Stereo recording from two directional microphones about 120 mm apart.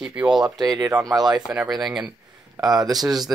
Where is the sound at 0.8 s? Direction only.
30° right (ahead or behind).